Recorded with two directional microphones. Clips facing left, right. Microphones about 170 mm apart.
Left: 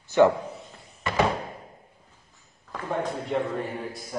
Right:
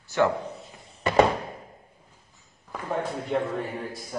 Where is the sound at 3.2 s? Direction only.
Centre (ahead or behind).